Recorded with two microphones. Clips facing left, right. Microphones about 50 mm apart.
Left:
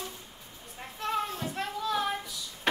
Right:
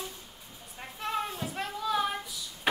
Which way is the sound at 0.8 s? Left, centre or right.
Centre.